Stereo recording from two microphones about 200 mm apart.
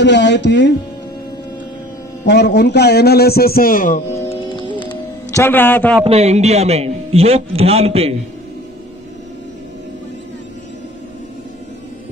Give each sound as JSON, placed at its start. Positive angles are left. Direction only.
{"t": 0.0, "sound": "speech", "side_deg": 60}
{"t": 2.2, "sound": "a man's voice", "side_deg": 55}
{"t": 4.3, "sound": "music", "side_deg": 25}
{"t": 6.0, "sound": "a man's voice", "side_deg": -30}